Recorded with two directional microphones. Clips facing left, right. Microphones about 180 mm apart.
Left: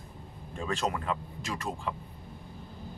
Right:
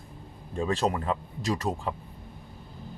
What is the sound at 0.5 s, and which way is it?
Speech, 35° right (ahead or behind).